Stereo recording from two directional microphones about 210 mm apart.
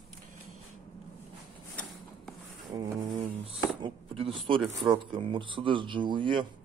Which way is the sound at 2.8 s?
25° right (ahead or behind).